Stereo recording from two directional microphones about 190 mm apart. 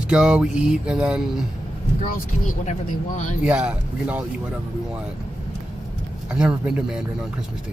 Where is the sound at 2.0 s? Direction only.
40° left (ahead or behind).